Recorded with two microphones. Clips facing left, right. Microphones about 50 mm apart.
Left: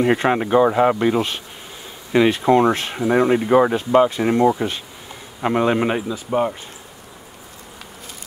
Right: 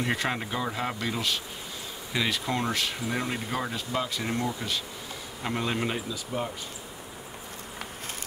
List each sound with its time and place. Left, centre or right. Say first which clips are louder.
0.0 s speech: left 11 dB; left